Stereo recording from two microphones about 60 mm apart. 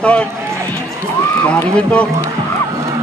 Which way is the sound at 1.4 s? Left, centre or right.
Left.